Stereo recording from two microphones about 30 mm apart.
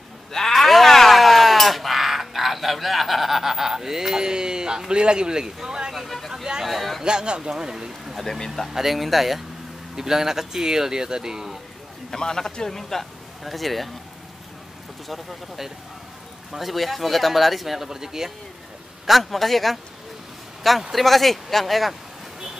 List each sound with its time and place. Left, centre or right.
0.3 s a sound: centre
5.9 s a sound: centre
6.3 s a sound: centre
6.6 s a sound: centre
7.1 s speech: right
7.7 s speech: centre
9.9 s speech: centre
12.1 s a man's voice: left
13.4 s speech: centre
15.0 s speech: centre
19.0 s speech: centre
20.9 s speech: centre